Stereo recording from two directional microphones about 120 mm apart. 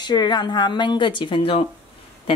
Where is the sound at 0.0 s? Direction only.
35° left (ahead or behind).